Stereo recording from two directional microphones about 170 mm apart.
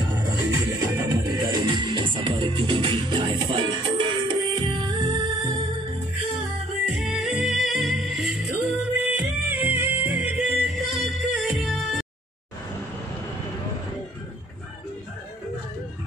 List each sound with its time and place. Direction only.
0.7 s music: 15° right (ahead or behind)
1.5 s music: 25° right (ahead or behind)
7.0 s music: 5° right (ahead or behind)